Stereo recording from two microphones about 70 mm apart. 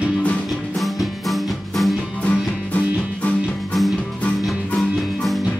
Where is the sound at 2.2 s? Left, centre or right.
Centre.